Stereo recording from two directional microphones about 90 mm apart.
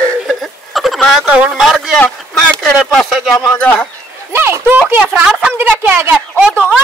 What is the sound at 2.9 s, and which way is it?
Speech, 5° left (ahead or behind).